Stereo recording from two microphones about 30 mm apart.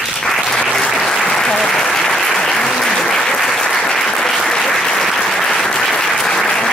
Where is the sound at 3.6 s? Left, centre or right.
Left.